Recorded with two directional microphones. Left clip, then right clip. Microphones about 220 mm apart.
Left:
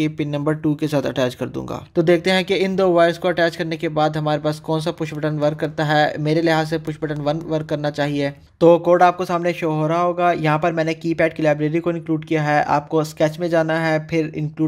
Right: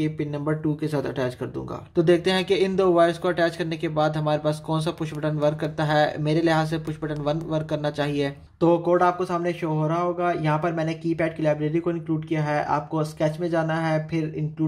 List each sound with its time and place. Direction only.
0.0 s speech: 40° left (ahead or behind)